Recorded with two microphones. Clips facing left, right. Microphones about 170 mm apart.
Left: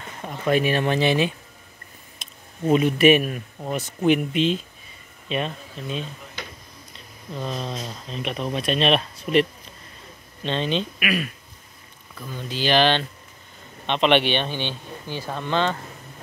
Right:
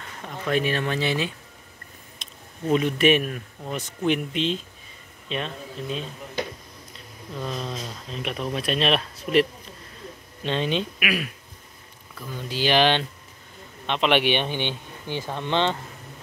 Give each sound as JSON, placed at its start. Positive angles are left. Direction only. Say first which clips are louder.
{"t": 0.2, "sound": "speech", "louder": "left 3 dB", "side_deg": 10}
{"t": 2.2, "sound": "a sound", "louder": "even", "side_deg": 5}
{"t": 2.7, "sound": "speech", "louder": "left 3 dB", "side_deg": 5}
{"t": 7.3, "sound": "speech", "louder": "left 1 dB", "side_deg": 5}